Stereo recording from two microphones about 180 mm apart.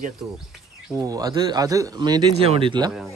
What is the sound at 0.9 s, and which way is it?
A man's voice, 20° right (ahead or behind).